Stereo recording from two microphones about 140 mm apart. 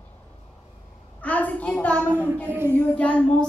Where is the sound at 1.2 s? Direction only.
10° left (ahead or behind).